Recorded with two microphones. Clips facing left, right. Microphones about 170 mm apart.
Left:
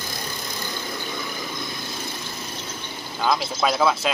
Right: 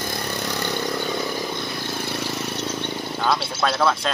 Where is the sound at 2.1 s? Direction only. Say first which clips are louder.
Right 7 dB; 75° right (ahead or behind).